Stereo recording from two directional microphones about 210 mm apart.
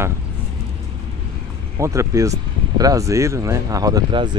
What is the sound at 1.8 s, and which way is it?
Speech, 15° right (ahead or behind).